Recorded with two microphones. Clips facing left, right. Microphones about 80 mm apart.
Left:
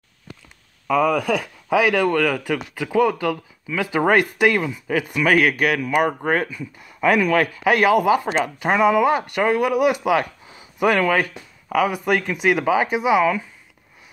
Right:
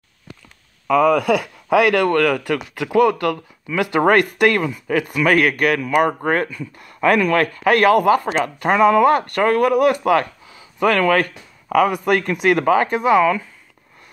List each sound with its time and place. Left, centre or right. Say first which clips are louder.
0.8 s speech: right 4 dB; centre
10.4 s a sound: even; left
10.8 s speech: right 2 dB; centre